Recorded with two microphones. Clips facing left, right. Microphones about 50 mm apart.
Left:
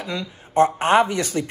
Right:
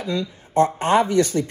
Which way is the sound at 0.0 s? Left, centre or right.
Left.